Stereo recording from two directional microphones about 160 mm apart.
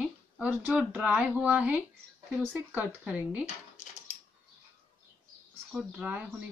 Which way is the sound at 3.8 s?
50° left (ahead or behind).